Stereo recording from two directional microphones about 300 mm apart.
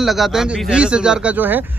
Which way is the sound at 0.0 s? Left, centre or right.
Centre.